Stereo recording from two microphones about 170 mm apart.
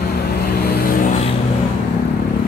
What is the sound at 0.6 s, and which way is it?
Vehicle, 65° left (ahead or behind).